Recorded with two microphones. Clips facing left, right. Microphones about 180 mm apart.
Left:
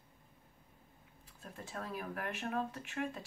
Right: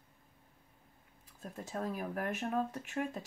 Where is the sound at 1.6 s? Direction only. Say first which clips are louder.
Right 5 dB; 45° right (ahead or behind).